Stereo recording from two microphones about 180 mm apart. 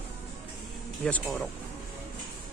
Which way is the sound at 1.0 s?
5° left (ahead or behind).